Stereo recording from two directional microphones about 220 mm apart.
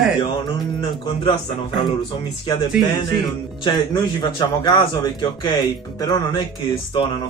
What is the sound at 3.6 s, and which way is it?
A man's voice, 20° left (ahead or behind).